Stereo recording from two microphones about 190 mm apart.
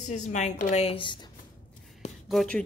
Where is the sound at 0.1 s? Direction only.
40° left (ahead or behind).